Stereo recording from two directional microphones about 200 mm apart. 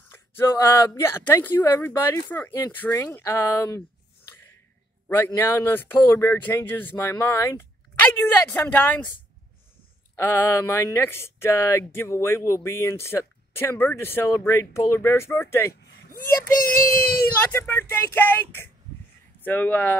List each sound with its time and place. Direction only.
0.1 s speech: 10° left (ahead or behind)
5.0 s speech: 10° left (ahead or behind)
10.1 s speech: 10° left (ahead or behind)
16.0 s speech: 45° left (ahead or behind)
17.5 s speech: 10° left (ahead or behind)